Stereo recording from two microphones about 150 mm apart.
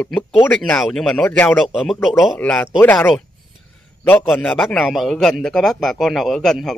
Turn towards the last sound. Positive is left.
turn(degrees=0)  # may be behind; listen again after turning